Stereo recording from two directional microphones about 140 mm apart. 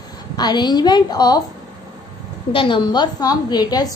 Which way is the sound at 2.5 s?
35° left (ahead or behind).